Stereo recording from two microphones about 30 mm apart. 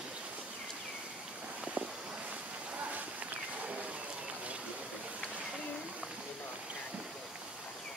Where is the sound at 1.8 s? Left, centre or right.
Right.